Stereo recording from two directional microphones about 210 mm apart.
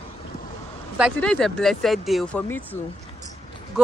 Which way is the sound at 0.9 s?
Centre (ahead or behind).